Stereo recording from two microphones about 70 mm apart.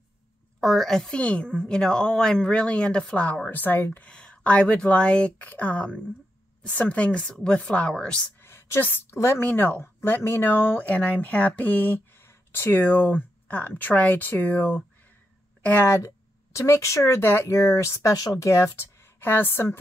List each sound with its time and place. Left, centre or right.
0.6 s a woman's voice: centre
3.4 s speech: left
4.1 s a woman's voice: centre
8.4 s a sound: left
8.8 s a woman's voice: left
15.8 s speech: left